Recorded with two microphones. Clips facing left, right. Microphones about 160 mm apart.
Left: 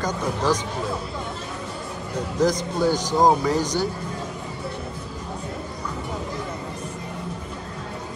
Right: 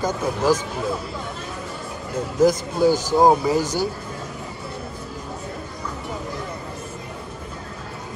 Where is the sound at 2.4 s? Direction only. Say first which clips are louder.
Right 4 dB; 5° right (ahead or behind).